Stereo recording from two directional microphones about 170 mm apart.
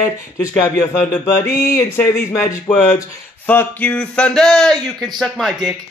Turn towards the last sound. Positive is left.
turn(degrees=0)  # may be behind; listen again after turning